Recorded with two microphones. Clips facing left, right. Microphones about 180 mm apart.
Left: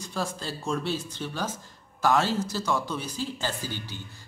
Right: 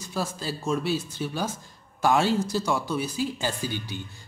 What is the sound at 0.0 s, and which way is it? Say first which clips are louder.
A woman's voice: right 1 dB; 5° right (ahead or behind).